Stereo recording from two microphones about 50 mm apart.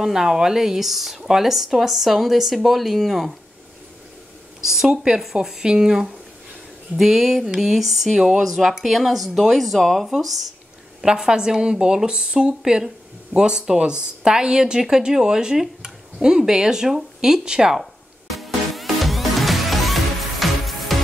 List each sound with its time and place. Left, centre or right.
0.0 s speech: centre
4.6 s speech: centre
11.0 s speech: centre
18.3 s music: centre